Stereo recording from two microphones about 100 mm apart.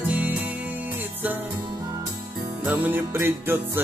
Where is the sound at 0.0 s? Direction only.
15° right (ahead or behind).